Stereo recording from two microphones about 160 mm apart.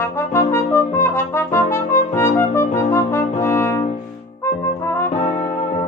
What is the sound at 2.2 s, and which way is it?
Brass instrument, 15° left (ahead or behind).